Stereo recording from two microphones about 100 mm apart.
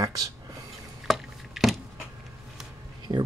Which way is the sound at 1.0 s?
Centre (ahead or behind).